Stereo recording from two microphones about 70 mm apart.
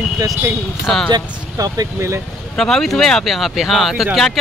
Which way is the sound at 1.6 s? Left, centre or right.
Right.